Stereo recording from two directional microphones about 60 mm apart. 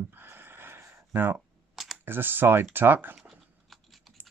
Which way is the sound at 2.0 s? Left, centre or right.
Right.